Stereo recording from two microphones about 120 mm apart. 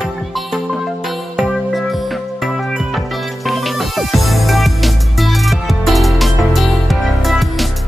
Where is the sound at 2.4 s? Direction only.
Centre (ahead or behind).